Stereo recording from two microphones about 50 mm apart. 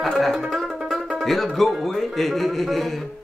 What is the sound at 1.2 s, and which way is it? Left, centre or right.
Speech, centre.